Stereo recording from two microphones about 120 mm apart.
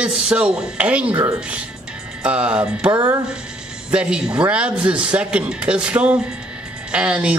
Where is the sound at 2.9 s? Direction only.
30° right (ahead or behind).